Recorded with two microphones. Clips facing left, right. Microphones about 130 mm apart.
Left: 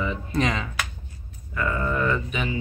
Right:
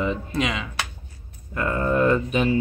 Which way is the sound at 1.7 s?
45° right (ahead or behind).